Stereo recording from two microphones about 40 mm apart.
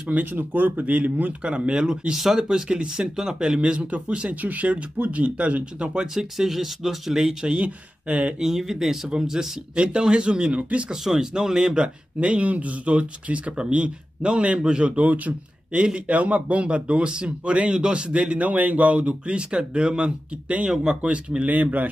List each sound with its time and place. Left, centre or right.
0.1 s speech: right
1.4 s speech: right
2.1 s speech: centre
2.4 s speech: right
6.1 s speech: centre
7.4 s speech: right
8.4 s speech: centre; by 10.9 s right
10.9 s speech: centre
21.5 s speech: right